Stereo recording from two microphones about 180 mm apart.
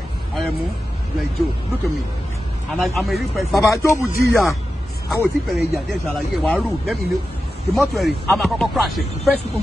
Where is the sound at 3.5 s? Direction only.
15° left (ahead or behind).